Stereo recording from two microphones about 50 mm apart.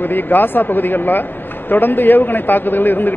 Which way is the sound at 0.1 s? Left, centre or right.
Left.